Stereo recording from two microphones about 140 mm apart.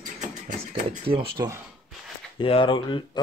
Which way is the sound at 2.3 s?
40° left (ahead or behind).